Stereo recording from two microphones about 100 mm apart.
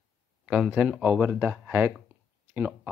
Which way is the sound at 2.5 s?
15° right (ahead or behind).